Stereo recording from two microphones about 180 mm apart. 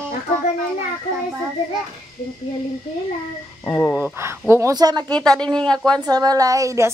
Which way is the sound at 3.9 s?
10° right (ahead or behind).